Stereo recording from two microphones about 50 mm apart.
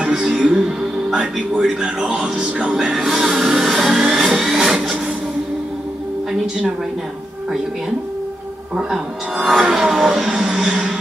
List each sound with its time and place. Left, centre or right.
0.0 s music: centre
1.3 s speech: centre
2.9 s music: centre
9.4 s music: centre